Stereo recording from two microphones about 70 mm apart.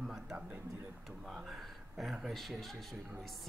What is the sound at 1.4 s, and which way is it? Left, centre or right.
A man's voice, centre.